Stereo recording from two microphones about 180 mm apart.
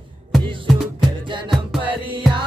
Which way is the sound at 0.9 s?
25° right (ahead or behind).